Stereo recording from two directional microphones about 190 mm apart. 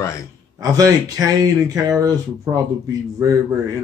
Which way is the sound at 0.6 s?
20° right (ahead or behind).